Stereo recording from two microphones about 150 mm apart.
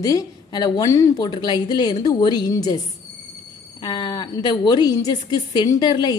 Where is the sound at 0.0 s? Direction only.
25° left (ahead or behind).